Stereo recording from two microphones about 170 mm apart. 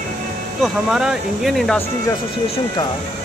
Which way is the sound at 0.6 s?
5° right (ahead or behind).